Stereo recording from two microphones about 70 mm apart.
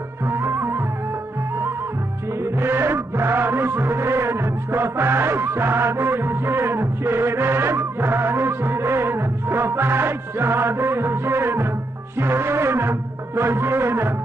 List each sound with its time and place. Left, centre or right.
0.3 s music: right
2.6 s music: right